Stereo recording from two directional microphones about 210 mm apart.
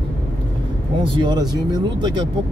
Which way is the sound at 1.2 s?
20° right (ahead or behind).